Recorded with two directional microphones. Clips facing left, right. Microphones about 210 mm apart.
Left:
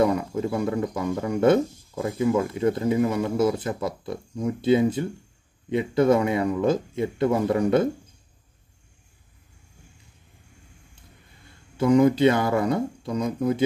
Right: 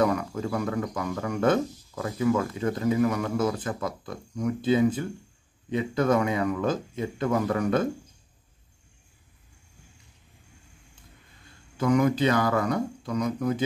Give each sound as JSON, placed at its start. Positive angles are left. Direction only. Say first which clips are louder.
{"t": 0.0, "sound": "speech", "louder": "left 3 dB", "side_deg": 25}
{"t": 11.8, "sound": "speech", "louder": "left 5 dB", "side_deg": 25}